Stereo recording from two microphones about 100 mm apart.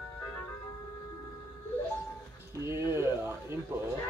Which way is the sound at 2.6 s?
25° right (ahead or behind).